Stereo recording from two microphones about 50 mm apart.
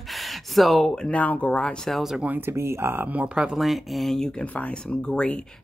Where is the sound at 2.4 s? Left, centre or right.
Right.